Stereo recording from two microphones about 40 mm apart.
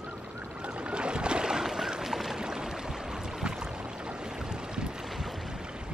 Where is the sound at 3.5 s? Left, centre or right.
Right.